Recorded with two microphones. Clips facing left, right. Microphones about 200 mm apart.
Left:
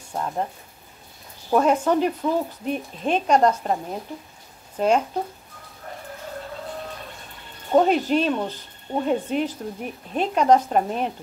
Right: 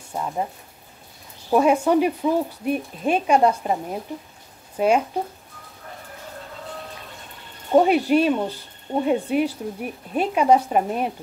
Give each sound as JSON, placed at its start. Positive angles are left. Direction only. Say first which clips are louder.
{"t": 0.1, "sound": "speech", "louder": "even", "side_deg": -5}
{"t": 1.5, "sound": "speech", "louder": "right 2 dB", "side_deg": -10}
{"t": 7.7, "sound": "speech", "louder": "right 2 dB", "side_deg": -10}